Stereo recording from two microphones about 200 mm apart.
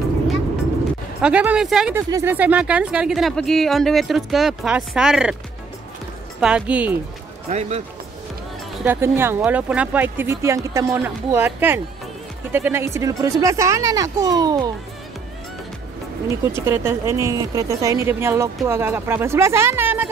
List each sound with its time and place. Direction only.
1.2 s speech: 5° right (ahead or behind)
6.4 s speech: 5° right (ahead or behind)
7.4 s a man's voice: 35° right (ahead or behind)
8.8 s speech: 10° right (ahead or behind)
16.5 s speech: 15° right (ahead or behind)